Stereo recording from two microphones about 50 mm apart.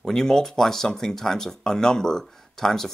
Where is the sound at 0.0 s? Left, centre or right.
Centre.